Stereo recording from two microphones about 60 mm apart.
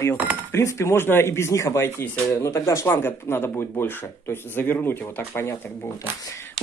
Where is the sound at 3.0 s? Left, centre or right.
Left.